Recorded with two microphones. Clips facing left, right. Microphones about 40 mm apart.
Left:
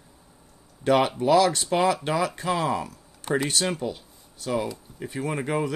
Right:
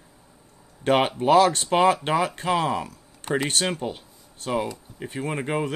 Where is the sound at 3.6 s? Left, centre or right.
Right.